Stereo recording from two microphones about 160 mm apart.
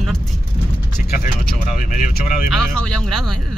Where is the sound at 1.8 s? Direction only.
60° left (ahead or behind).